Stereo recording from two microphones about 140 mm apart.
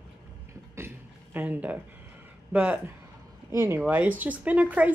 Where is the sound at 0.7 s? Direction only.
15° right (ahead or behind).